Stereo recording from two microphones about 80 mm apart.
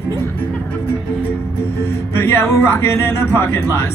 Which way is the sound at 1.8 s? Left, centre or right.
Left.